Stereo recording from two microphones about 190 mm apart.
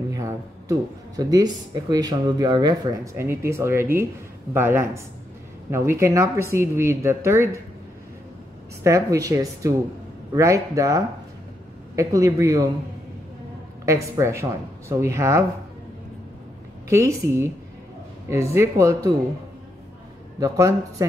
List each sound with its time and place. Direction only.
0.1 s speech: 15° right (ahead or behind)
8.8 s speech: 15° right (ahead or behind)
13.8 s speech: 15° right (ahead or behind)
16.9 s speech: 15° right (ahead or behind)
20.3 s speech: 15° right (ahead or behind)